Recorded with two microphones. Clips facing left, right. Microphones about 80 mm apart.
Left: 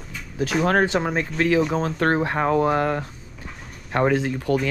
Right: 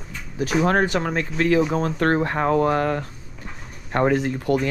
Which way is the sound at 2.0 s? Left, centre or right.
Left.